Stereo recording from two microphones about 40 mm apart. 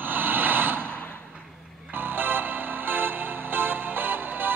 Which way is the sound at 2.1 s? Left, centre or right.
Right.